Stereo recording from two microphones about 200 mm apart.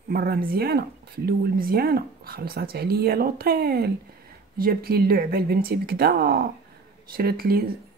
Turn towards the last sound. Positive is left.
turn(degrees=-50)  # may be behind; listen again after turning